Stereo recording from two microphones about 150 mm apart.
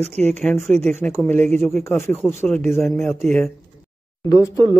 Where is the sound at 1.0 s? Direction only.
10° left (ahead or behind).